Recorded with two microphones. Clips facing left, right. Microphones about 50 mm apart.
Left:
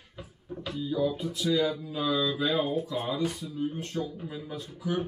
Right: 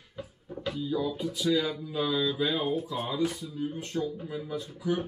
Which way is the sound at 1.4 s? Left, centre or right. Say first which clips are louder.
Even; centre.